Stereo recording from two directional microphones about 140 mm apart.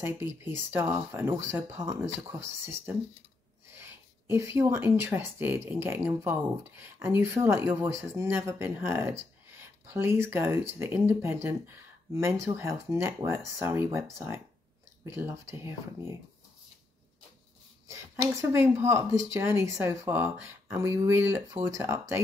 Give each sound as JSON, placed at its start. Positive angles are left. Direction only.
{"t": 0.0, "sound": "speech", "side_deg": -15}
{"t": 17.8, "sound": "speech", "side_deg": -20}